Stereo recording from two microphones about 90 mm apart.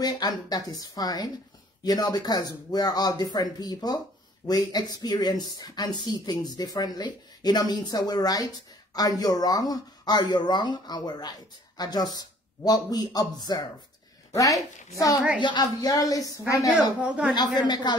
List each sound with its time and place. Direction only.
0.0 s a woman's voice: 45° left (ahead or behind)
15.4 s speech: 55° left (ahead or behind)
17.0 s a woman's voice: 10° right (ahead or behind)
17.4 s speech: 50° left (ahead or behind)